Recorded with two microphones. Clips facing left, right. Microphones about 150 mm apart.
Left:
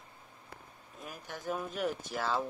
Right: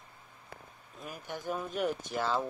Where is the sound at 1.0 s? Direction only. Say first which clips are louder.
Right 3 dB; centre (ahead or behind).